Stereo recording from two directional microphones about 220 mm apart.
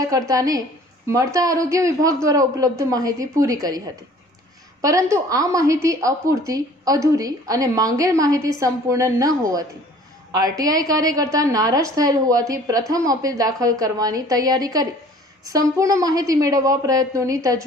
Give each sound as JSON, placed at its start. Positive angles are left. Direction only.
{"t": 0.0, "sound": "a woman's voice", "side_deg": -15}